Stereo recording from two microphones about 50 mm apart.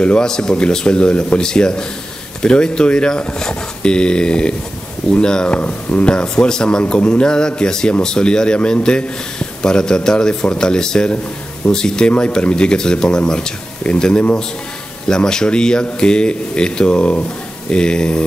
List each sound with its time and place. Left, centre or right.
0.0 s speech: left
5.6 s speech: left